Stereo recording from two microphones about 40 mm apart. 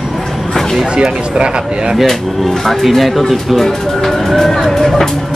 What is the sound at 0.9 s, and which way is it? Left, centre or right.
Speech, right.